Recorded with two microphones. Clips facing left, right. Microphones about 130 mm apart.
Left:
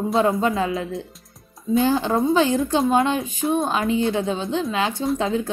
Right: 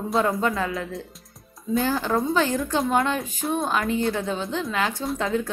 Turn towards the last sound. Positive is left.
turn(degrees=20)  # may be behind; listen again after turning